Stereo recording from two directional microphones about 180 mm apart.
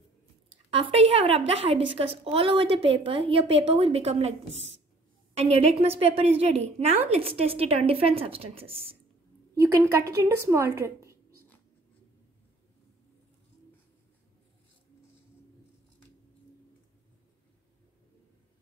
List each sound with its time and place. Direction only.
0.7 s a woman's voice: 30° right (ahead or behind)
9.6 s a woman's voice: 15° right (ahead or behind)